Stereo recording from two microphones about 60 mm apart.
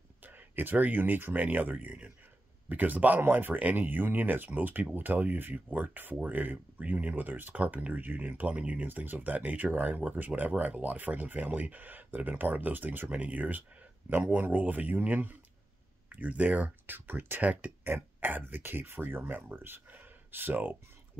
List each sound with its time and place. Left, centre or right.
0.2 s speech: right
8.8 s speech: right